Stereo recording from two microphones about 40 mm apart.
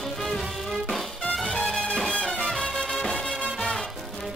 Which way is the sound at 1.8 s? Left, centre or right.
Left.